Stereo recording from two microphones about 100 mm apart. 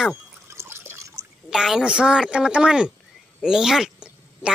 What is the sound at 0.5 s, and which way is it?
Water, 25° right (ahead or behind).